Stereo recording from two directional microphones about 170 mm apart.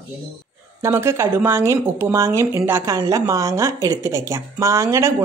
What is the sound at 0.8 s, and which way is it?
Speech, 15° right (ahead or behind).